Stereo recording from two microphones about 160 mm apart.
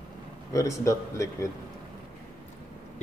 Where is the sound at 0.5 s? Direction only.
20° left (ahead or behind).